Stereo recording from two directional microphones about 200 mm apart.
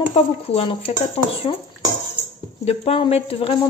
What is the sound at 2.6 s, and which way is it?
Speech, 30° left (ahead or behind).